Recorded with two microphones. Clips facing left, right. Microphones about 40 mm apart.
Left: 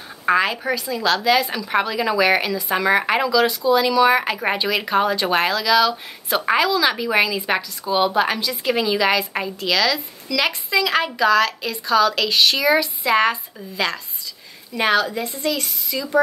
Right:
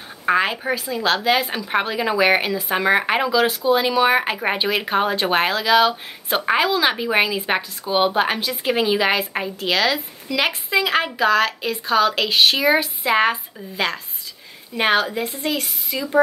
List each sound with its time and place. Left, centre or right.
0.3 s a woman's voice: right